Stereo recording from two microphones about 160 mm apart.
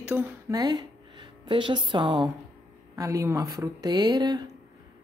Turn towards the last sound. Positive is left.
turn(degrees=-25)  # may be behind; listen again after turning